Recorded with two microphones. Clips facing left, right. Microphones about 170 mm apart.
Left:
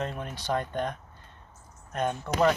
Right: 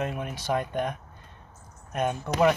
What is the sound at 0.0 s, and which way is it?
Speech, 10° right (ahead or behind).